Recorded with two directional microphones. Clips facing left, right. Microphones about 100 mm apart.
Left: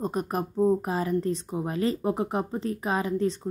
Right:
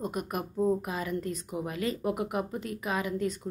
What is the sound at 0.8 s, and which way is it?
Speech, 35° left (ahead or behind).